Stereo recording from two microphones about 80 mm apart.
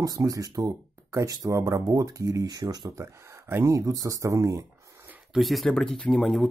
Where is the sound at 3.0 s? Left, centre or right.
Right.